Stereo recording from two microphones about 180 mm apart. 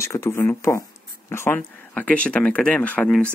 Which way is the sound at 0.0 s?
15° left (ahead or behind).